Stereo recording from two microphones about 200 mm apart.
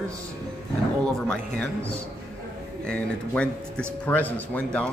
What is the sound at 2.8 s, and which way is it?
Speech, 5° left (ahead or behind).